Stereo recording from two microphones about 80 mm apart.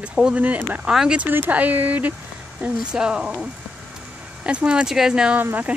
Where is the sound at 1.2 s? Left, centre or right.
Right; by 5.3 s centre.